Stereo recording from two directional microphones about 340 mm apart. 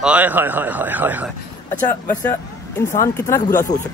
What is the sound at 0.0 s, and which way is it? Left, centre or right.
Speech, centre.